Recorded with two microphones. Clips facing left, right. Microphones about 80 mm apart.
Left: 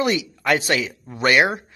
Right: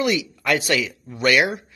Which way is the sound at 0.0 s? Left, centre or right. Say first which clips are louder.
Left 1 dB; left.